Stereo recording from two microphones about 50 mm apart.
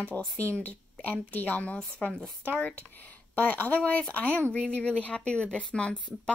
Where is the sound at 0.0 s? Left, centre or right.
Centre.